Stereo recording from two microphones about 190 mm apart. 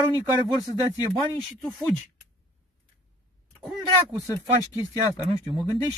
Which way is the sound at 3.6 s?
Centre (ahead or behind).